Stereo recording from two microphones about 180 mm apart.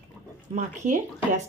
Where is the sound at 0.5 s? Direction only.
40° right (ahead or behind).